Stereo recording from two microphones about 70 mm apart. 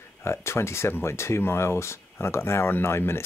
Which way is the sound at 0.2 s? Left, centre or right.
Left.